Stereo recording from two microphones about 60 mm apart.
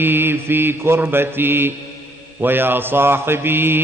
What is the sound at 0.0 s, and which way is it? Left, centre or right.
Mantra, right.